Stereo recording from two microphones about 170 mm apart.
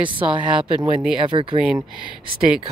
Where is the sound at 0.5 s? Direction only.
35° right (ahead or behind).